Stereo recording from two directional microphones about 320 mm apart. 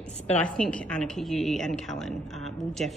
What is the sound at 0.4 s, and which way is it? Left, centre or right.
A woman's voice, centre.